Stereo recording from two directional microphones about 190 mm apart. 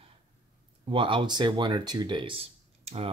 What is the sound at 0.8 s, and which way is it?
Speech, 25° right (ahead or behind).